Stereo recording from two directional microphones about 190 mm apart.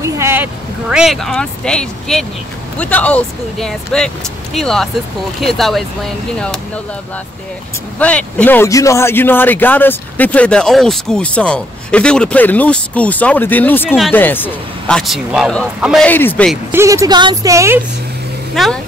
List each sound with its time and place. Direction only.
0.0 s speech: 15° right (ahead or behind)
8.0 s speech: 5° left (ahead or behind)
14.1 s speech: 10° left (ahead or behind)
16.7 s a woman's voice: 15° right (ahead or behind)
18.5 s speech: centre (ahead or behind)